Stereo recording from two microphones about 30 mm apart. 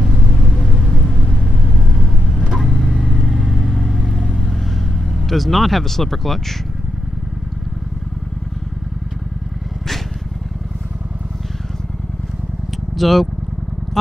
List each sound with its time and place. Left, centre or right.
0.0 s vehicle: centre
0.8 s vehicle: centre
3.2 s vehicle: centre
5.3 s speech: centre
12.9 s speech: centre